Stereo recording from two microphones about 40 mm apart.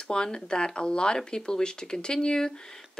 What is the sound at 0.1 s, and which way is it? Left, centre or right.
A woman's voice, left.